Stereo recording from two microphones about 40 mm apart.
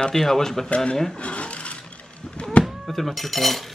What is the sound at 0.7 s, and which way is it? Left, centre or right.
Speech, left.